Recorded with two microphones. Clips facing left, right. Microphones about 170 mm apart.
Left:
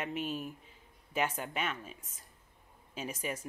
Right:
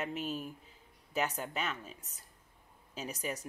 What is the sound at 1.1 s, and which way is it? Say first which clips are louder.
Speech: left 1 dB; 10° left (ahead or behind).